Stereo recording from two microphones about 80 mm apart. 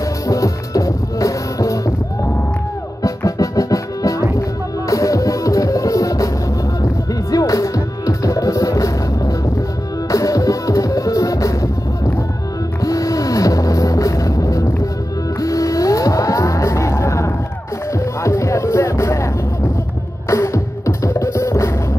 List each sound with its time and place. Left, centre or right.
0.3 s music: left
3.3 s music: left
20.2 s music: left